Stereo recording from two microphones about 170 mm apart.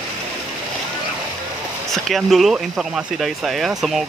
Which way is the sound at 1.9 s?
Centre (ahead or behind).